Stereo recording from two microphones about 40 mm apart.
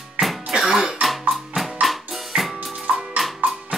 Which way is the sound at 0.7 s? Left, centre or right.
Centre.